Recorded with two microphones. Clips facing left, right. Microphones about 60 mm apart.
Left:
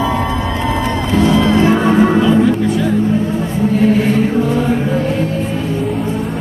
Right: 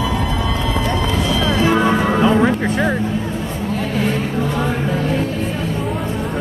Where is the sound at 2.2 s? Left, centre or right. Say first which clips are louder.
Left 2 dB; right.